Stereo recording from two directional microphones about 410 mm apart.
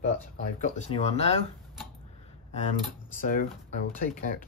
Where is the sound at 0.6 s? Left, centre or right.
Centre.